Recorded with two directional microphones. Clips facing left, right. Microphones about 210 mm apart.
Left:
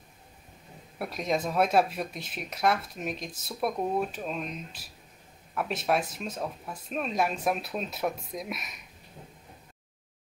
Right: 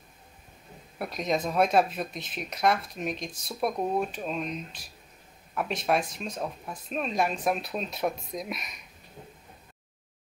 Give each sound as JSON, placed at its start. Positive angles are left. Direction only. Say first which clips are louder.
{"t": 0.9, "sound": "speech", "louder": "right 1 dB", "side_deg": 5}